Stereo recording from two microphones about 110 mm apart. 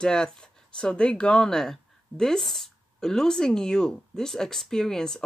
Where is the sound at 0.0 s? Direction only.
5° left (ahead or behind).